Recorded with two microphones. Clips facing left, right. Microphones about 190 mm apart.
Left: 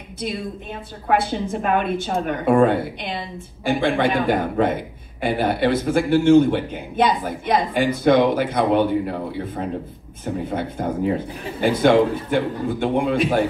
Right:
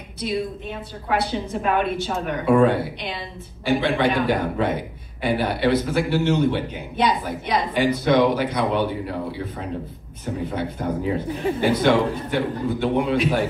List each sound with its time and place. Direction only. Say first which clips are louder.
0.2 s a man's voice: right 2 dB; 50° left (ahead or behind)
10.2 s a man's voice: left 1 dB; 50° left (ahead or behind)